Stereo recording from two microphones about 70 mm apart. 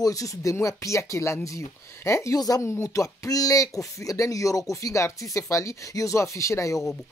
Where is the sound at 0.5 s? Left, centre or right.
Left.